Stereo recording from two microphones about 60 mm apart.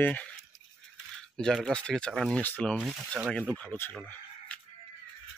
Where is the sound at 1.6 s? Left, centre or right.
Centre.